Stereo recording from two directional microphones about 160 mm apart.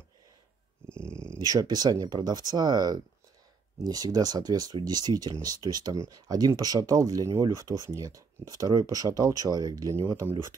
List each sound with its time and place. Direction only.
1.0 s speech: 15° right (ahead or behind)